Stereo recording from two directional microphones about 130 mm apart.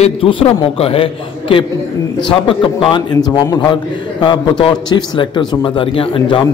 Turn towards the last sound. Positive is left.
turn(degrees=40)  # may be behind; listen again after turning